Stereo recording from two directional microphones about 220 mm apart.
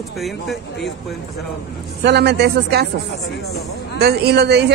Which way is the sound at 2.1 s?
50° right (ahead or behind).